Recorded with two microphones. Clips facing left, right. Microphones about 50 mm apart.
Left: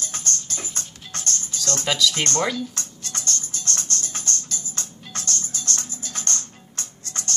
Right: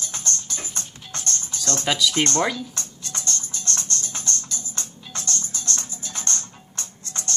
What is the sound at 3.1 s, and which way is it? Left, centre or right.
Music, right.